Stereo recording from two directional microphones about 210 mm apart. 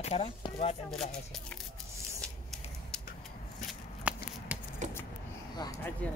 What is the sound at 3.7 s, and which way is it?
Shuffling cards, 5° right (ahead or behind).